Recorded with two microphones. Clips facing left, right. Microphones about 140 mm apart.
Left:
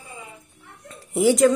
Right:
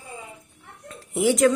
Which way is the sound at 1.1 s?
Centre (ahead or behind).